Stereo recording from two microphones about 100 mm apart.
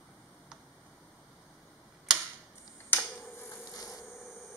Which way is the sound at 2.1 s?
5° right (ahead or behind).